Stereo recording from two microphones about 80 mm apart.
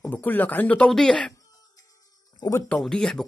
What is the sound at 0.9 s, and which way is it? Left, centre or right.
Speech, centre.